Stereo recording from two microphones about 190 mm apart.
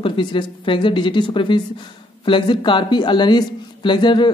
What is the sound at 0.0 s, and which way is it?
A man's voice, 25° left (ahead or behind).